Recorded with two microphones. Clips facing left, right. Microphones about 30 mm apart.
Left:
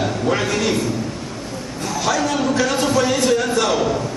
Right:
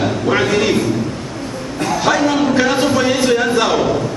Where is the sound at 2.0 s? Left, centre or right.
Right.